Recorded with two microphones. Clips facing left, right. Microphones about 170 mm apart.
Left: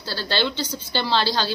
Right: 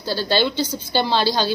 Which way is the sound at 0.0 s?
15° right (ahead or behind).